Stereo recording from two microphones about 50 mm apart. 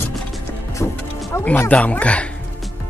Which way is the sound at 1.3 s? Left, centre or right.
Left.